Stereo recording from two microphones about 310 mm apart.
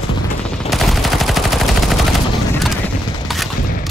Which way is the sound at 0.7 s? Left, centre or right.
Centre.